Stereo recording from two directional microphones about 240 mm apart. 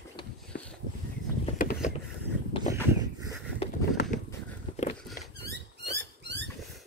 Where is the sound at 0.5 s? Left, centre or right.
Left.